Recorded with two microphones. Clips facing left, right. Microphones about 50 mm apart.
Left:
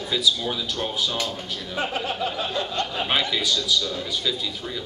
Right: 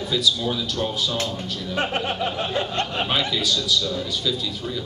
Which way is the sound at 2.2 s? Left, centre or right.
Right.